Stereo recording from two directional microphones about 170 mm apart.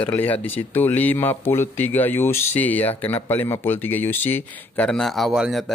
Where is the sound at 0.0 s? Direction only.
10° left (ahead or behind).